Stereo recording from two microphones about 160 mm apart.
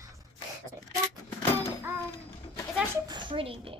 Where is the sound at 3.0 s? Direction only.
30° right (ahead or behind).